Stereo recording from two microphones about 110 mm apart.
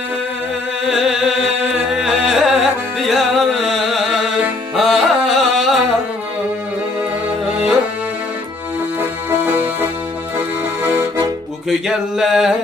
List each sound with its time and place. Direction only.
0.8 s music: 5° right (ahead or behind)
4.7 s carnatic music: centre (ahead or behind)
9.4 s music: 20° right (ahead or behind)
10.8 s accordion: 20° right (ahead or behind)
11.9 s a sound: 5° right (ahead or behind)